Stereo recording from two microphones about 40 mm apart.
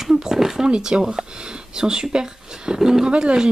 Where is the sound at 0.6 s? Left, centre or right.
Right.